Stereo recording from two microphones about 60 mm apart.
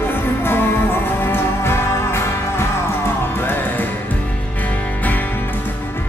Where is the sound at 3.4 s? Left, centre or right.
Left.